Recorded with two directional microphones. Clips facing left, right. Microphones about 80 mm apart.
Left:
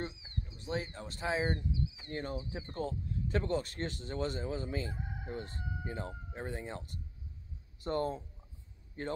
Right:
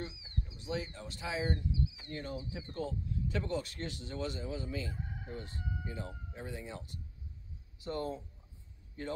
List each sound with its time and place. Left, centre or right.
0.0 s speech: left